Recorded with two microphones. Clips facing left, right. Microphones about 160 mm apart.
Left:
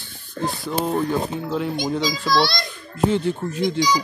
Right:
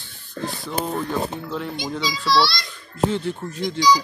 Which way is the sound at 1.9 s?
45° left (ahead or behind).